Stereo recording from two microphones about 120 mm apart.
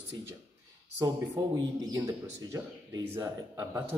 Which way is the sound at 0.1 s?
30° right (ahead or behind).